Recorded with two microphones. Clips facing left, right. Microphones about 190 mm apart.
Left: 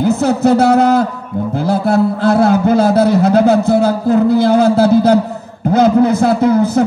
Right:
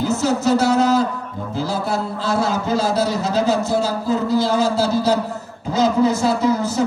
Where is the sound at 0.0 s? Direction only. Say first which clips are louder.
Left 6 dB; 60° left (ahead or behind).